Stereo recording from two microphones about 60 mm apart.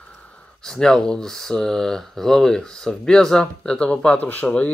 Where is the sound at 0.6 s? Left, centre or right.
Centre.